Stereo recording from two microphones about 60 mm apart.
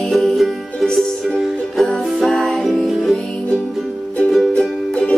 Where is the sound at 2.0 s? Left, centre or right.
Centre.